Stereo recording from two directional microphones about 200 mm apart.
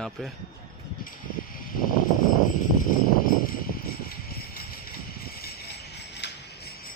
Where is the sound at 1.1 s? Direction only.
45° left (ahead or behind).